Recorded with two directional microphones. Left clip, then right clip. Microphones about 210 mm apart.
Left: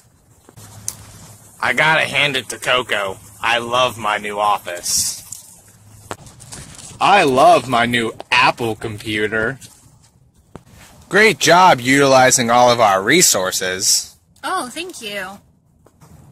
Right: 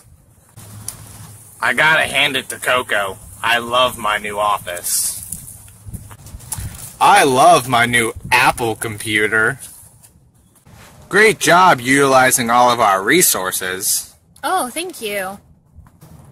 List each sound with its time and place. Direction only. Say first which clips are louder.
1.6 s speech: right 1 dB; 50° left (ahead or behind)
7.0 s speech: right 1 dB; 30° left (ahead or behind)
11.1 s speech: even; 45° left (ahead or behind)
14.4 s speech: right 3 dB; 50° right (ahead or behind)